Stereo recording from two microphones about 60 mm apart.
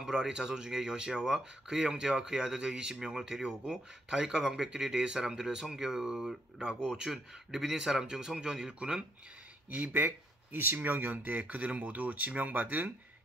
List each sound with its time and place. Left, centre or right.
0.0 s speech: centre
9.7 s speech: right